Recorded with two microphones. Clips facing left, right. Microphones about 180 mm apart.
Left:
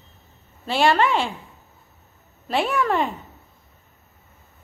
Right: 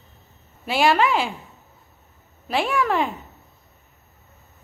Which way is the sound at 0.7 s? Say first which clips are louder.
Even; 5° right (ahead or behind).